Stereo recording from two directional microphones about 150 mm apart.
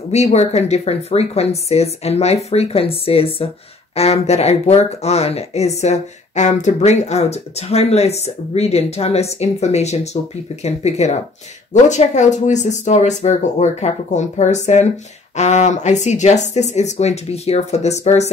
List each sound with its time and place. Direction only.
0.1 s speech: 50° left (ahead or behind)